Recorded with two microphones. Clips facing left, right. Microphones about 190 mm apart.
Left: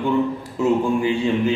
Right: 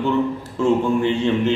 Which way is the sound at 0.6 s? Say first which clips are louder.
Right 1 dB; 10° left (ahead or behind).